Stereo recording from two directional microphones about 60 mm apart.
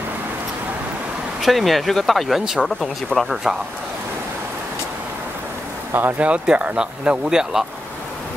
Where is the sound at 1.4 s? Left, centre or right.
Centre.